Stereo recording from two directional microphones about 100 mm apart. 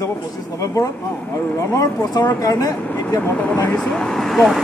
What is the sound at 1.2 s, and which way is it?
Speech, 20° left (ahead or behind).